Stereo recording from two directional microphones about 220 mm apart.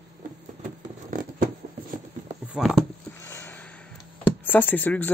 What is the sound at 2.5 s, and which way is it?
Speech, centre (ahead or behind).